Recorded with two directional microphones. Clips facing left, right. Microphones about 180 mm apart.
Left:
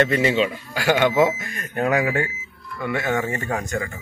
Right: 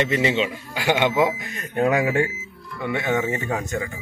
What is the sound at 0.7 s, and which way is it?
Speech, 15° right (ahead or behind).